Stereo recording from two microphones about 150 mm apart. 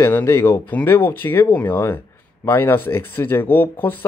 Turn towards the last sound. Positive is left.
turn(degrees=15)  # may be behind; listen again after turning